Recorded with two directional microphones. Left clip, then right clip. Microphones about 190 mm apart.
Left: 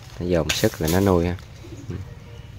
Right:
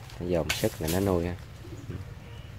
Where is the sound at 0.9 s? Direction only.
25° left (ahead or behind).